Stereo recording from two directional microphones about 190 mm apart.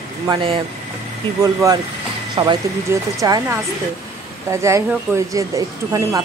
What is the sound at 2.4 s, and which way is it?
Speech, 30° right (ahead or behind).